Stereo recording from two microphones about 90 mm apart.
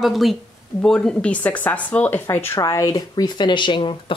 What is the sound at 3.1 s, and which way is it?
Speech, 55° left (ahead or behind).